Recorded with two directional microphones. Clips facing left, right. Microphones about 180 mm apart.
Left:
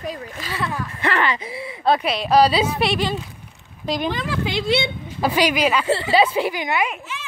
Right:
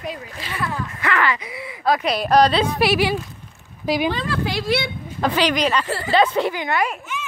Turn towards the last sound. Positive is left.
turn(degrees=5)  # may be behind; listen again after turning